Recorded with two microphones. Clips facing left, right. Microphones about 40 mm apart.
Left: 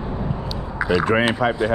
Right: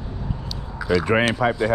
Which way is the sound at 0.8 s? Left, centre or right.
Centre.